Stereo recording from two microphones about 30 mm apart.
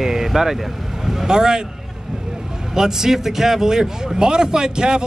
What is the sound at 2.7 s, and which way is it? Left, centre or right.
Speech, centre.